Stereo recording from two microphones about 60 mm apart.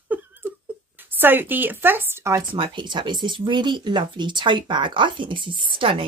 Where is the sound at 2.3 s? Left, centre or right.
Right.